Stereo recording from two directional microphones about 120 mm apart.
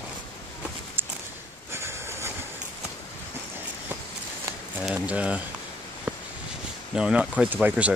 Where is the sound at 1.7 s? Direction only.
20° right (ahead or behind).